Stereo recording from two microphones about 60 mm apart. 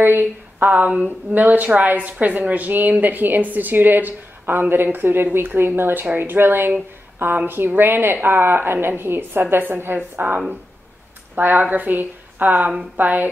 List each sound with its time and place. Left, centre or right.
0.0 s a woman's voice: right